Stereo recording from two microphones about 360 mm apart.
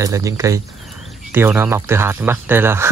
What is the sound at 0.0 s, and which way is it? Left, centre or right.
Speech, centre.